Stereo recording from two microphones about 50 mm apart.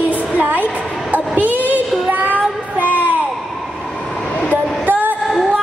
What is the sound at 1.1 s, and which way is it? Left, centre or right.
Child singing, right.